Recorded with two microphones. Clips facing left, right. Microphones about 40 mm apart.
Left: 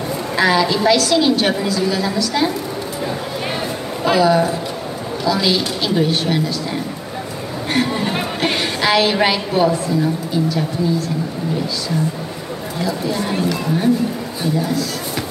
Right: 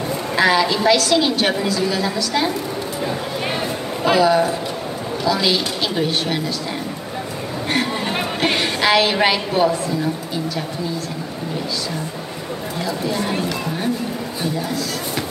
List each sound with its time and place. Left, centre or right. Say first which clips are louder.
0.4 s a woman's voice: left 1 dB; right
4.0 s a woman's voice: left 1 dB; right
7.7 s a woman's voice: left 3 dB; right
12.8 s a woman's voice: left 2 dB; right